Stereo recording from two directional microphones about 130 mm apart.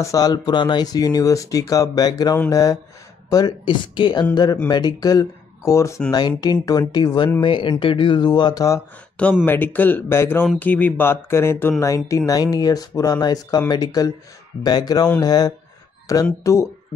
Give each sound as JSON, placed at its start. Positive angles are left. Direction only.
{"t": 0.0, "sound": "speech", "side_deg": 25}
{"t": 9.1, "sound": "speech", "side_deg": 10}